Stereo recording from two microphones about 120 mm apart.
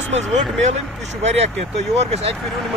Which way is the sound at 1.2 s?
65° right (ahead or behind).